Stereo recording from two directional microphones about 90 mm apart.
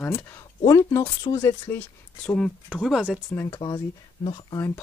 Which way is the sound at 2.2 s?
10° left (ahead or behind).